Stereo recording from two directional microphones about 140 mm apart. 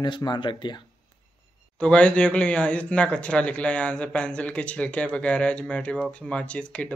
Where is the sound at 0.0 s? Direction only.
35° left (ahead or behind).